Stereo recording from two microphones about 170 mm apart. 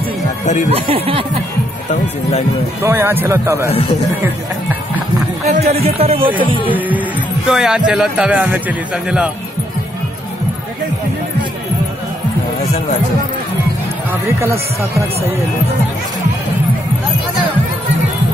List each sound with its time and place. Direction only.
0.7 s speech: 35° right (ahead or behind)
2.8 s speech: 15° right (ahead or behind)
5.5 s speech: 40° right (ahead or behind)
7.4 s a man's voice: 5° right (ahead or behind)
14.4 s speech: 15° right (ahead or behind)